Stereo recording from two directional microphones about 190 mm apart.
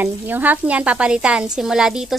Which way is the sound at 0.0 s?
10° right (ahead or behind).